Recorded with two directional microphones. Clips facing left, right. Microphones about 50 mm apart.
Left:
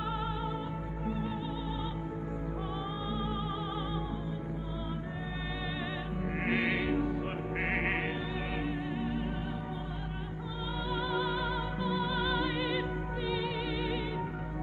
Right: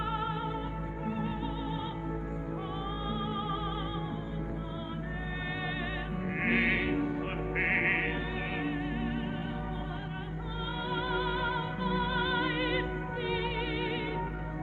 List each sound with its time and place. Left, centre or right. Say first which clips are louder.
0.0 s music: right 2 dB; right
3.1 s music: right 3 dB; right
6.1 s music: right 2 dB; right
10.9 s music: even; right